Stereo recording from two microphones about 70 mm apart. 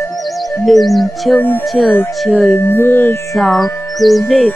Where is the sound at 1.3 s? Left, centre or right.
Left.